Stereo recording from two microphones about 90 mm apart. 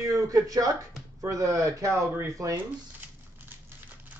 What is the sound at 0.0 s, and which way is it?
Speech, 40° right (ahead or behind).